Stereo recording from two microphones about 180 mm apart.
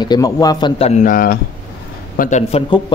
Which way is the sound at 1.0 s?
50° left (ahead or behind).